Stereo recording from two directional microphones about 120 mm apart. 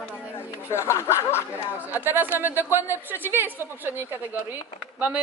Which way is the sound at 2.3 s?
15° right (ahead or behind).